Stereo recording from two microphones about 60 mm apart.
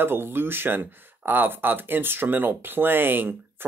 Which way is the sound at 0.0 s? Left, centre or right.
Right.